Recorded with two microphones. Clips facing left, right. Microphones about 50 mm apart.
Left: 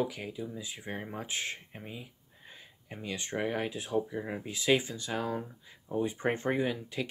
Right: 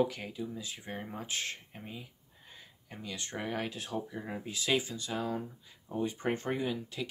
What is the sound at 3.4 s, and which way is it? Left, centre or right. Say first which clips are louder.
Speech: left 3 dB; centre.